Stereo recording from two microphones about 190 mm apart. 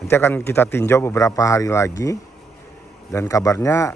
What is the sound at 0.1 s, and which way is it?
Speech, 10° left (ahead or behind).